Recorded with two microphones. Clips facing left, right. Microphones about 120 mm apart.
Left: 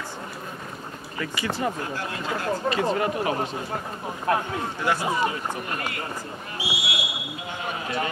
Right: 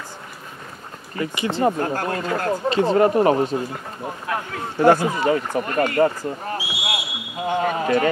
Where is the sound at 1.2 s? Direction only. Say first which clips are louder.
Right 5 dB; 25° right (ahead or behind).